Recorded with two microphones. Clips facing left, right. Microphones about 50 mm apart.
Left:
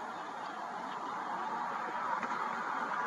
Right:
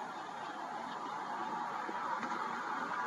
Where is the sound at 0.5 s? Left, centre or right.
Centre.